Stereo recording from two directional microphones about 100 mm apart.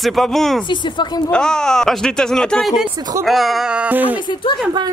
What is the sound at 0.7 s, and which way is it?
Speech, 50° left (ahead or behind).